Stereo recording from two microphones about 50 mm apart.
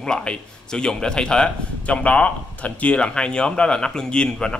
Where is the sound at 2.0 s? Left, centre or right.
Left.